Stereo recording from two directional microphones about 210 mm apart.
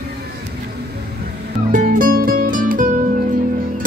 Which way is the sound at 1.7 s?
40° right (ahead or behind).